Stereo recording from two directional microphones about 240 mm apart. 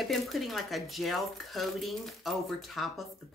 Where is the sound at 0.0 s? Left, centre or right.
Centre.